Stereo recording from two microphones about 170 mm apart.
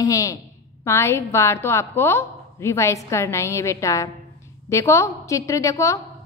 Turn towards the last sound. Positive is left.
turn(degrees=20)  # may be behind; listen again after turning